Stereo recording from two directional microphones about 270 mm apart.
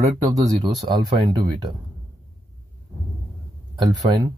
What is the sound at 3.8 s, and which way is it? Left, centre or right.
Speech, centre.